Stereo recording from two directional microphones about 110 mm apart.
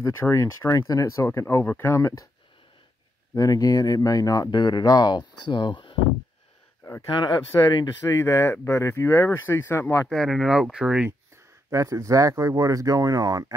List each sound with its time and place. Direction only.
0.0 s speech: 25° left (ahead or behind)
3.3 s speech: 35° left (ahead or behind)
7.2 s speech: 45° left (ahead or behind)
8.1 s speech: 30° left (ahead or behind)
10.0 s speech: 5° left (ahead or behind)
11.7 s speech: 30° right (ahead or behind)